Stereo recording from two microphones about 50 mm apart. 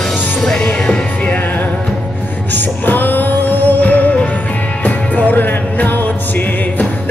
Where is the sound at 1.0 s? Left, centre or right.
Left.